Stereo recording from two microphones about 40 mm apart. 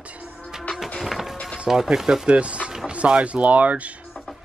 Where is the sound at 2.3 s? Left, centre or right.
Right.